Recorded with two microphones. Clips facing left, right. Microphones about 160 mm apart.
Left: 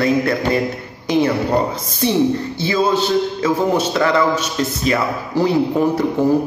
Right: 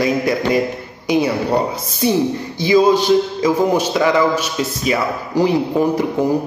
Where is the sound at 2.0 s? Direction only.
10° right (ahead or behind).